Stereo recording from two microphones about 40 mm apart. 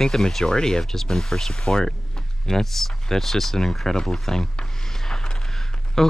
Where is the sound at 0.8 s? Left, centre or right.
Centre.